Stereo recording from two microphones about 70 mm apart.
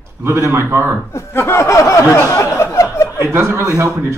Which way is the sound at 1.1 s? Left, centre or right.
Left.